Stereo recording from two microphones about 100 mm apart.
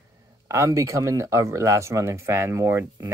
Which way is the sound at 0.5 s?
30° right (ahead or behind).